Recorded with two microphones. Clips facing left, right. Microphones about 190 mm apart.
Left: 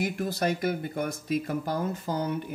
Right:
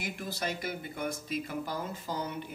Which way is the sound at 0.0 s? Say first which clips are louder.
Left 8 dB; 50° left (ahead or behind).